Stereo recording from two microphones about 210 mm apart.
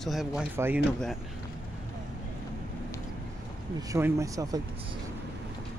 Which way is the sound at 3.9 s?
15° right (ahead or behind).